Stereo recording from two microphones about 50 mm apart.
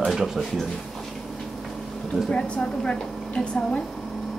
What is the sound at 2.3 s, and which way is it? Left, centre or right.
A woman's voice, centre.